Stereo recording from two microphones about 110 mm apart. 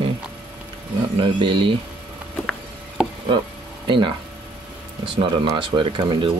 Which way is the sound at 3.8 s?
50° right (ahead or behind).